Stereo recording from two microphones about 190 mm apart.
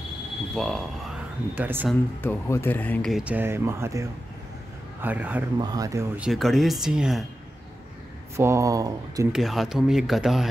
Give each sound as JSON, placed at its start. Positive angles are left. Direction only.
{"t": 0.6, "sound": "speech", "side_deg": 0}
{"t": 1.5, "sound": "speech", "side_deg": -10}
{"t": 2.2, "sound": "speech", "side_deg": 10}
{"t": 5.6, "sound": "speech", "side_deg": -20}
{"t": 6.2, "sound": "speech", "side_deg": 0}
{"t": 8.4, "sound": "speech", "side_deg": -15}
{"t": 9.3, "sound": "speech", "side_deg": 0}